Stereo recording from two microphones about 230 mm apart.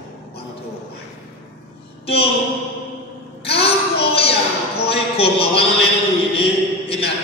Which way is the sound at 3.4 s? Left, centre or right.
Left.